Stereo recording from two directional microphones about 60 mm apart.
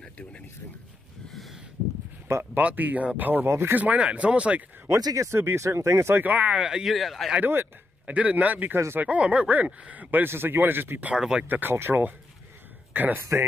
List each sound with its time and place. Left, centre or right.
1.3 s a sound: centre
2.3 s speech: right
2.6 s speech: right
3.4 s speech: right
3.7 s speech: right
4.8 s speech: right
6.2 s speech: right; by 7.3 s centre
8.1 s speech: right
8.7 s speech: right
9.0 s speech: centre
10.2 s speech: right
11.1 s speech: centre
11.4 s speech: right